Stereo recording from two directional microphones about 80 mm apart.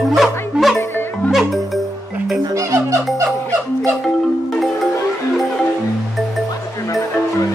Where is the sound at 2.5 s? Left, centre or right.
Right.